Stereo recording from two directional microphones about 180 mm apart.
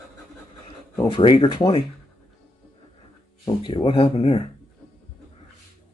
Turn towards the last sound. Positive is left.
turn(degrees=30)  # may be behind; listen again after turning